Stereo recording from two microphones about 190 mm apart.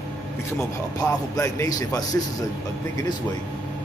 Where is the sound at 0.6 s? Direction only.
15° left (ahead or behind).